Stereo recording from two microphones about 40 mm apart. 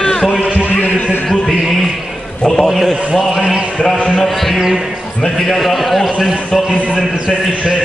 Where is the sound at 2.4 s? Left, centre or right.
Centre.